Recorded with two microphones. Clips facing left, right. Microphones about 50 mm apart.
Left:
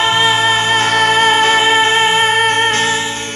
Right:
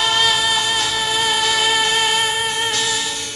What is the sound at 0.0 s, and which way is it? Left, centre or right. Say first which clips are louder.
Music: left 5 dB; left.